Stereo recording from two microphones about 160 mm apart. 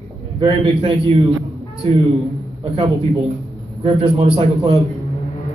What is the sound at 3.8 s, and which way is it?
A man's voice, 35° right (ahead or behind).